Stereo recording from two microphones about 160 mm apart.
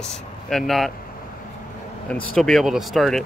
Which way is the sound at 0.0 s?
5° left (ahead or behind).